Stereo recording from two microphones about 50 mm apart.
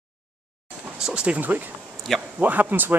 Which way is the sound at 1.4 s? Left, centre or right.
Right.